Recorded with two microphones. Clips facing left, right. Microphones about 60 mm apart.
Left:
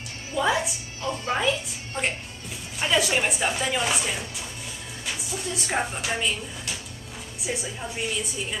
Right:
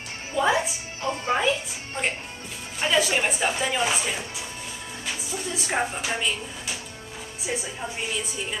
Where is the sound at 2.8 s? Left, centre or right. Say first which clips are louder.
Right 1 dB; centre.